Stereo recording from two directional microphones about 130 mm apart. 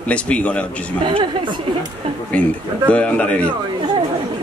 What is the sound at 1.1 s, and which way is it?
Speech, 35° right (ahead or behind).